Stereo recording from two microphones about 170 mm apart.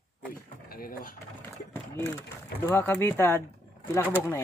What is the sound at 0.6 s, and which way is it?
Speech, 60° left (ahead or behind).